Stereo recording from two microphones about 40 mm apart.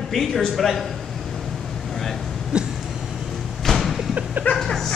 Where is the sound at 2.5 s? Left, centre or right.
Right.